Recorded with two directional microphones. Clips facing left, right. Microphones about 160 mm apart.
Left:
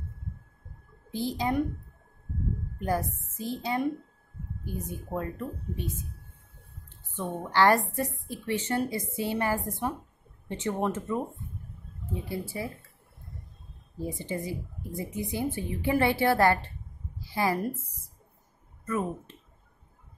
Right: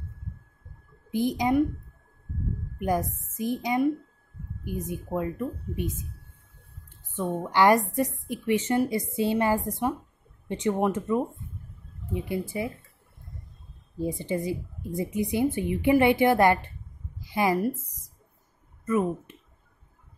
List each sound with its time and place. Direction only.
1.1 s a woman's voice: 15° right (ahead or behind)
2.8 s a woman's voice: 10° right (ahead or behind)
7.2 s a woman's voice: 15° right (ahead or behind)
14.1 s a woman's voice: 20° right (ahead or behind)
17.2 s a sound: 20° right (ahead or behind)
18.9 s a woman's voice: 10° right (ahead or behind)